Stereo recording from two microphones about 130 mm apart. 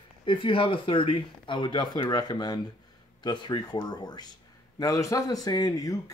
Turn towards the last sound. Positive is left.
turn(degrees=25)  # may be behind; listen again after turning